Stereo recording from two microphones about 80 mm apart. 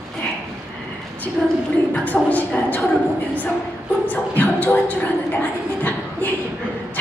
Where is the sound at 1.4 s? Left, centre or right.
Centre.